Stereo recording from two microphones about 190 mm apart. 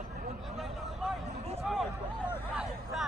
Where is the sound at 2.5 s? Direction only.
Centre (ahead or behind).